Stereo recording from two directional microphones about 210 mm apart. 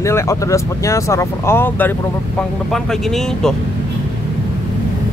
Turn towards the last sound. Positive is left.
turn(degrees=0)  # may be behind; listen again after turning